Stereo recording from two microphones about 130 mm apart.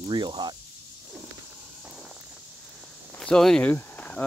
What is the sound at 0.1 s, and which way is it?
Speech, 35° right (ahead or behind).